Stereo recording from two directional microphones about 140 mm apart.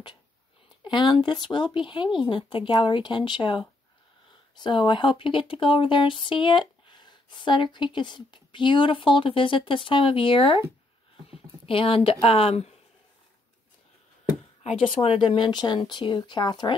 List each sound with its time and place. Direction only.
0.8 s speech: 35° left (ahead or behind)
14.6 s speech: 45° left (ahead or behind)